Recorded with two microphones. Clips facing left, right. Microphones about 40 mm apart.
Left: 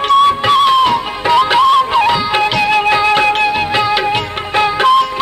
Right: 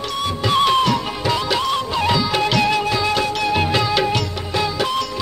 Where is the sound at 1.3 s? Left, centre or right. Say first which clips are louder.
Left 13 dB; left.